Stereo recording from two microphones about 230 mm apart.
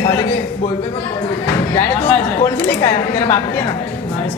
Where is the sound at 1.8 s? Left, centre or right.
Centre.